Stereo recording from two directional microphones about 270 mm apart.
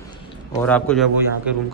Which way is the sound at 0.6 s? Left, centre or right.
Centre.